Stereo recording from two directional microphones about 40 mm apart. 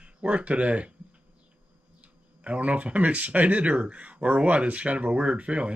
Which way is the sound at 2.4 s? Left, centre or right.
Right.